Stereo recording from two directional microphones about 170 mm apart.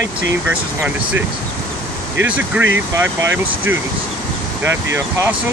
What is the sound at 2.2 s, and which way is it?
Speech, 10° right (ahead or behind).